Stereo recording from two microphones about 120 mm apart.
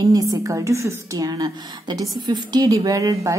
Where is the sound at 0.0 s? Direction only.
30° right (ahead or behind).